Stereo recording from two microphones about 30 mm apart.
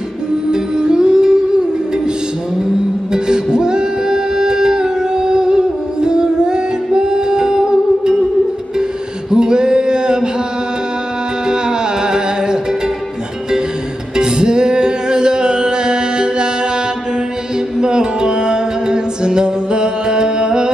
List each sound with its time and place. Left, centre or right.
0.5 s music: right
3.1 s music: right
9.3 s male singing: right
11.4 s music: right
14.1 s music: right
17.7 s music: right